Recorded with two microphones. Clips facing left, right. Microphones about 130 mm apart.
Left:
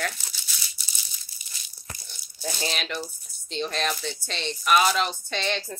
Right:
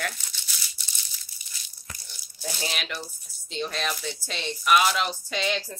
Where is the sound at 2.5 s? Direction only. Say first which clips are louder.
Left 2 dB; 5° right (ahead or behind).